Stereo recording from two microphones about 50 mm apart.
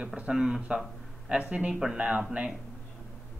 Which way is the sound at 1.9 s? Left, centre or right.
Right.